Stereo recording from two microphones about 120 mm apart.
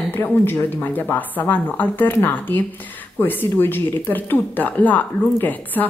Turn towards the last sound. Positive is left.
turn(degrees=15)  # may be behind; listen again after turning